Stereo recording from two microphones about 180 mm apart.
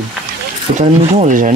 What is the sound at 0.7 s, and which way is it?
Speech, 40° right (ahead or behind).